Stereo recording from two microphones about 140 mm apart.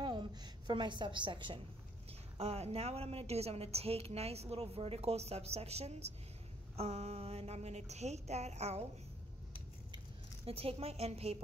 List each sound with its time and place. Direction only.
0.0 s a sound: 30° right (ahead or behind)
2.3 s a woman's voice: 50° right (ahead or behind)
10.4 s a woman's voice: 45° right (ahead or behind)